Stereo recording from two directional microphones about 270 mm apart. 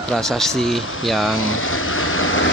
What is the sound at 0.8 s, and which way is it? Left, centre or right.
Speech, left.